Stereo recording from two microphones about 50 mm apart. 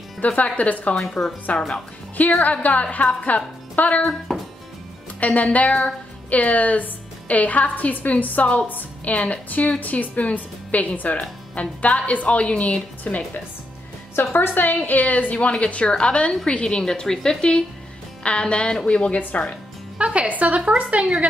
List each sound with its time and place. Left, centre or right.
0.2 s a woman's voice: left
1.2 s speech: centre
2.1 s a woman's voice: left
4.3 s music: centre
5.2 s a woman's voice: left
13.0 s a woman's voice: left
14.1 s a woman's voice: left
20.0 s a woman's voice: right